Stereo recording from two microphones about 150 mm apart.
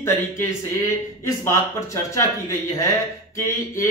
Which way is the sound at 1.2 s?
20° left (ahead or behind).